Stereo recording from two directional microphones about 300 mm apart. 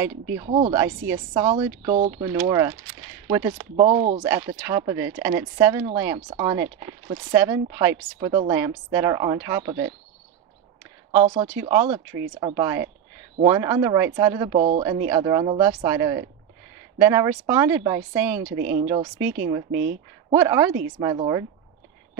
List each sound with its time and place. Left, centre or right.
0.4 s speech: centre
11.1 s speech: right
11.7 s speech: centre
18.7 s speech: right
18.9 s speech: centre
19.7 s speech: right
20.2 s speech: centre